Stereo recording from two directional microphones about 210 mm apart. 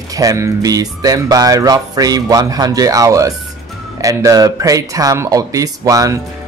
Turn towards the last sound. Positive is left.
turn(degrees=-15)  # may be behind; listen again after turning